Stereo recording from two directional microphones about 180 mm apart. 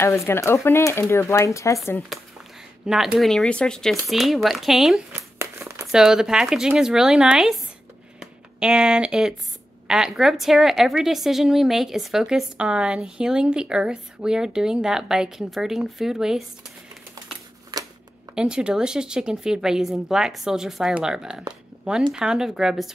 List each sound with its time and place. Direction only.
0.0 s speech: 15° left (ahead or behind)
2.1 s speech: centre (ahead or behind)
5.4 s crumpling: 15° right (ahead or behind)
5.9 s speech: 5° right (ahead or behind)
17.7 s a sound: 20° right (ahead or behind)
18.3 s speech: 5° right (ahead or behind)